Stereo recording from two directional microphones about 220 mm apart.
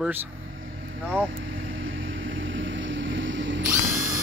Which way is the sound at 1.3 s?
60° right (ahead or behind).